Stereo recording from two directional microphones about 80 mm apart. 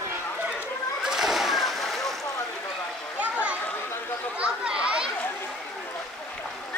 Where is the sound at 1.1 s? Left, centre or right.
Centre.